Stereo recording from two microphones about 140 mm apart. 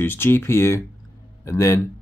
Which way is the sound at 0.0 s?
15° left (ahead or behind).